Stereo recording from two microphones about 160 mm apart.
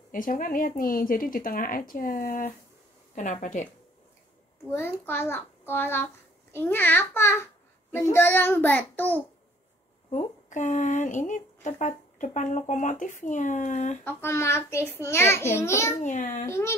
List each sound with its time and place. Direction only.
0.1 s a woman's voice: 60° left (ahead or behind)
4.6 s a child's voice: 15° left (ahead or behind)
10.1 s a woman's voice: 50° left (ahead or behind)
14.0 s a child's voice: 15° left (ahead or behind)
16.0 s a woman's voice: 50° left (ahead or behind)
16.4 s a child's voice: 15° left (ahead or behind)